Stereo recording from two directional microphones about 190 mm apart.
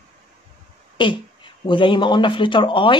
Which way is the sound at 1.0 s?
25° left (ahead or behind).